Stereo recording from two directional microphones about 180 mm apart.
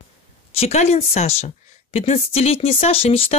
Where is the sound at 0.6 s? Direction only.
35° left (ahead or behind).